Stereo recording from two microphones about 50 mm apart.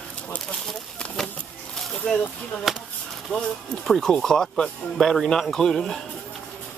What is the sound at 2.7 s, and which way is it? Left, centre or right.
Speech, centre.